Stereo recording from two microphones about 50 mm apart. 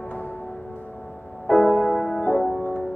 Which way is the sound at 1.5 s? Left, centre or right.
Centre.